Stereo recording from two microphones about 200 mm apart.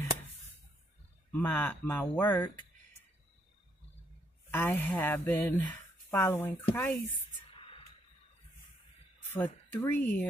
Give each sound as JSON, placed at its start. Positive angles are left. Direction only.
{"t": 1.3, "sound": "speech", "side_deg": 10}
{"t": 4.5, "sound": "speech", "side_deg": 10}
{"t": 7.3, "sound": "whispering", "side_deg": 25}
{"t": 9.3, "sound": "speech", "side_deg": 10}